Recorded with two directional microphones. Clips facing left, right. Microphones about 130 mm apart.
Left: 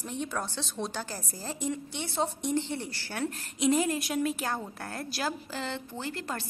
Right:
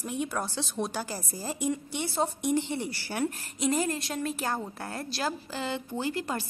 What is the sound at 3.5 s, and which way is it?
A woman's voice, centre (ahead or behind).